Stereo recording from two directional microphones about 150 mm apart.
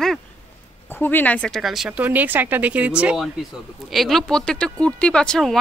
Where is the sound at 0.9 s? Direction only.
15° left (ahead or behind).